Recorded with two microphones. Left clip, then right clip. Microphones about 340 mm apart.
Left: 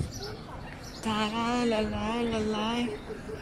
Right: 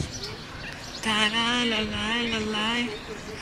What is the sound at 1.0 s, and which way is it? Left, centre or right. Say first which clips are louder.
Speech: right 6 dB; centre.